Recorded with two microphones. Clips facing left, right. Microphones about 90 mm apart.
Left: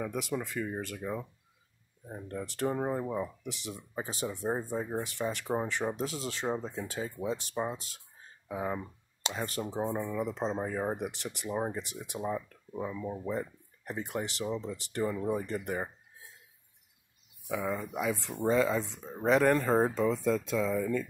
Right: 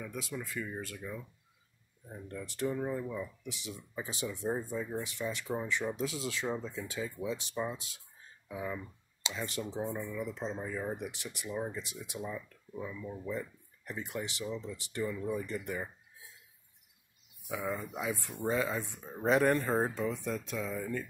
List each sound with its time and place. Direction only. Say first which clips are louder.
0.0 s speech: left 6 dB; 60° left (ahead or behind)
0.9 s speech: left 6 dB; 45° left (ahead or behind)
2.4 s speech: left 3 dB; 50° left (ahead or behind)
10.2 s speech: left 5 dB; 60° left (ahead or behind); by 11.1 s 45° left (ahead or behind)
11.1 s speech: left 4 dB; 60° left (ahead or behind)
11.5 s speech: left 4 dB; 40° left (ahead or behind); by 14.5 s 55° left (ahead or behind)
14.5 s speech: left 4 dB; 35° left (ahead or behind)
14.9 s speech: left 4 dB; 50° left (ahead or behind)
17.5 s speech: left 3 dB; 85° left